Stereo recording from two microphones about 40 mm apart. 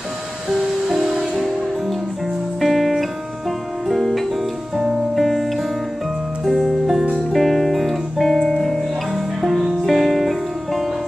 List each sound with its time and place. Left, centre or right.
0.5 s music: centre
2.6 s music: centre
9.1 s music: centre